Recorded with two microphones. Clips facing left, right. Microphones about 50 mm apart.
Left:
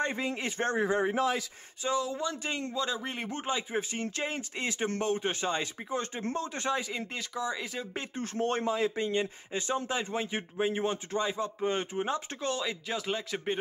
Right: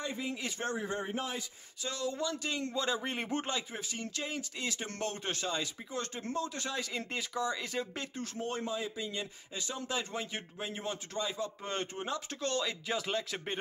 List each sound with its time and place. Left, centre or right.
0.4 s a man's voice: left
0.9 s a man's voice: left
2.0 s speech: centre
2.2 s speech: left
2.7 s speech: centre
3.7 s a man's voice: left
6.8 s speech: centre
7.1 s speech: centre
8.4 s speech: left
8.9 s a man's voice: left
11.6 s speech: centre
12.1 s speech: left
12.4 s speech: centre